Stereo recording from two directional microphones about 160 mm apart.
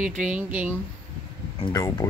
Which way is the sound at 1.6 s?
25° left (ahead or behind).